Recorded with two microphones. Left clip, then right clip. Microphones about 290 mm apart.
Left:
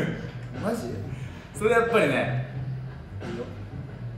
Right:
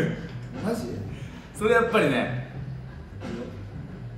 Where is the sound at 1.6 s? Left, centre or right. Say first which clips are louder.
Even; centre.